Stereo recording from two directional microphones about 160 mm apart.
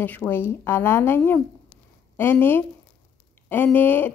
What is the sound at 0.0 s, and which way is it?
Speech, 10° left (ahead or behind).